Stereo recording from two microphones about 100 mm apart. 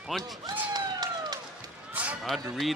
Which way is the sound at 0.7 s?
40° right (ahead or behind).